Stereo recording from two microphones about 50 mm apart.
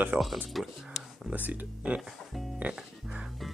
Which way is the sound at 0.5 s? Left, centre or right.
Centre.